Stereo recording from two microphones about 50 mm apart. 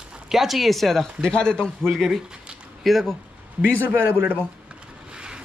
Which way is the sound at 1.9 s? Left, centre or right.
Centre.